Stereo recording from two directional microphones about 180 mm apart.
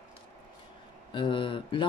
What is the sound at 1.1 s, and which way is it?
Speech, 30° left (ahead or behind).